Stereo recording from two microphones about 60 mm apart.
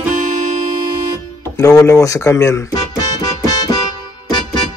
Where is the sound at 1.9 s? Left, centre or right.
Left.